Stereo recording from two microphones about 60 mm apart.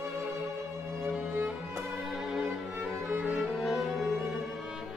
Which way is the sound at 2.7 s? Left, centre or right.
Right.